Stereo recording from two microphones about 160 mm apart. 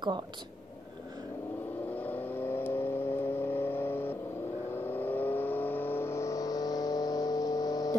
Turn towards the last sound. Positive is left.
turn(degrees=25)  # may be behind; listen again after turning